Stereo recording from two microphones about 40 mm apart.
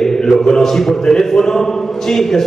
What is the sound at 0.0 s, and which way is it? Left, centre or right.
A man's voice, centre.